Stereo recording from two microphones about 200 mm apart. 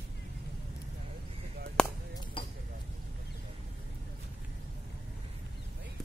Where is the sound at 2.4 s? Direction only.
25° left (ahead or behind).